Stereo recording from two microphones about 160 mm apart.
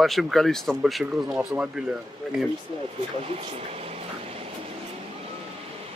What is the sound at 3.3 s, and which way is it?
Speech, 35° right (ahead or behind).